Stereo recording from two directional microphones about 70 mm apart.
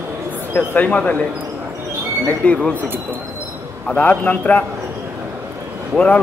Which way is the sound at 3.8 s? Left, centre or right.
Centre.